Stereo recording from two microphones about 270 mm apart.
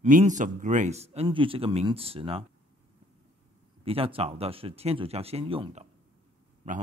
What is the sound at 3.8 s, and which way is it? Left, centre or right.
A man's voice, right.